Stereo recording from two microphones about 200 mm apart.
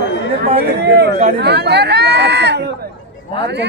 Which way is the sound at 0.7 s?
55° right (ahead or behind).